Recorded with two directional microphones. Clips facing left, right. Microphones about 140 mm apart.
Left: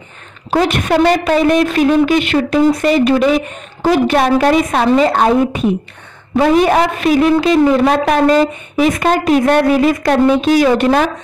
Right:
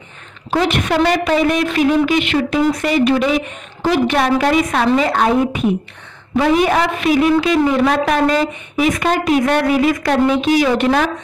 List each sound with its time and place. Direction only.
0.5 s a woman's voice: 40° left (ahead or behind)